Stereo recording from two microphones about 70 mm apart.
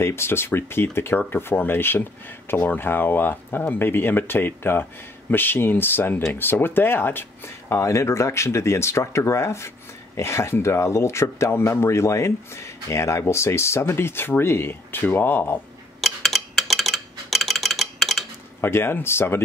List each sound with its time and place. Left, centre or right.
0.0 s speech: left
16.0 s a sound: centre
18.6 s speech: left